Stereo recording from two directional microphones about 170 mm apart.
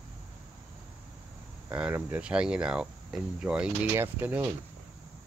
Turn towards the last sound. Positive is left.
turn(degrees=-10)  # may be behind; listen again after turning